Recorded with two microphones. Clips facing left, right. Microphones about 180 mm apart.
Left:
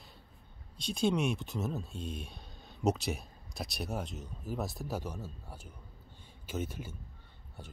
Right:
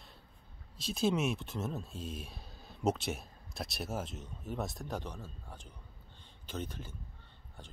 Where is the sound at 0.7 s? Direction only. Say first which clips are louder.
Left 1 dB; centre (ahead or behind).